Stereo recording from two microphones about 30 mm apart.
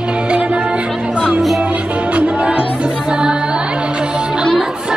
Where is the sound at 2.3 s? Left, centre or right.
Right.